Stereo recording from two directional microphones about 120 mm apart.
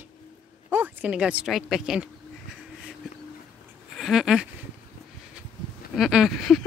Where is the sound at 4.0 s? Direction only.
5° right (ahead or behind).